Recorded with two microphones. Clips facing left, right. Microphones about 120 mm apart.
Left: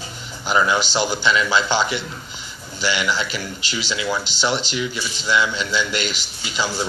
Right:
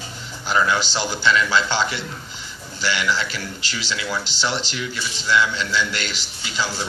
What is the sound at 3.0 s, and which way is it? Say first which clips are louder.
Speech: left 1 dB; 15° left (ahead or behind).